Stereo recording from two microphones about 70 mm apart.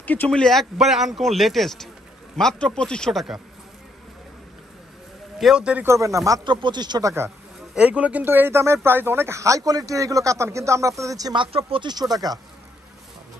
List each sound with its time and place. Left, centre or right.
0.0 s speech: left
0.3 s a man's voice: centre
5.4 s a man's voice: centre
5.9 s a man's voice: right
6.4 s speech: right
7.7 s a man's voice: centre; by 11.3 s right
11.8 s speech: right